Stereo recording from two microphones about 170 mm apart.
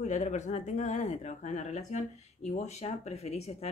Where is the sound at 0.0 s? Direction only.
45° left (ahead or behind).